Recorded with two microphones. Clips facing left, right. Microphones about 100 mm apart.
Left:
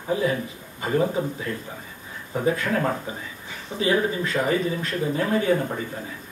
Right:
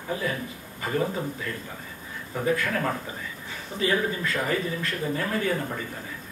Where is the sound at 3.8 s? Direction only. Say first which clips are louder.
Left 3 dB; 20° left (ahead or behind).